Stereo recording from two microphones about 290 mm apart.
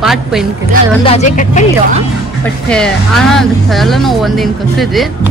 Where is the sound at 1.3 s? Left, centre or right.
Left.